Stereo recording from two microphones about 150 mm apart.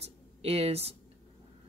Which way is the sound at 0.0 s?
45° right (ahead or behind).